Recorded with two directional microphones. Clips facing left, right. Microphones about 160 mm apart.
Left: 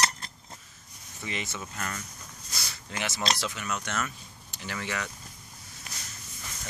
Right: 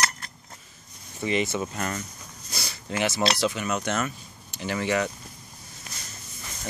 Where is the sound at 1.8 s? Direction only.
25° right (ahead or behind).